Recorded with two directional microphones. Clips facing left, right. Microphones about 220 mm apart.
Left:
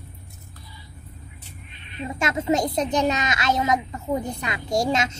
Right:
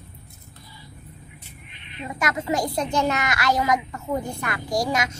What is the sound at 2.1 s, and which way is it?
A woman's voice, 25° left (ahead or behind).